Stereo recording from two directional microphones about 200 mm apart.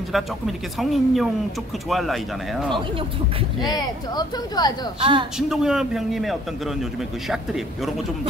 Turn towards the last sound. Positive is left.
turn(degrees=0)  # may be behind; listen again after turning